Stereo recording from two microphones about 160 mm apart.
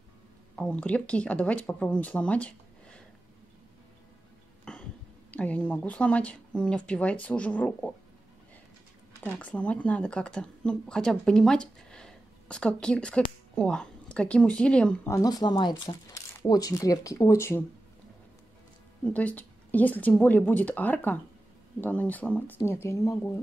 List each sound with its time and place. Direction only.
0.6 s speech: 5° left (ahead or behind)
4.7 s cough: 5° left (ahead or behind)
5.3 s speech: 10° left (ahead or behind)
9.2 s speech: 10° left (ahead or behind)
15.0 s speech: 20° left (ahead or behind)
19.1 s speech: 10° left (ahead or behind)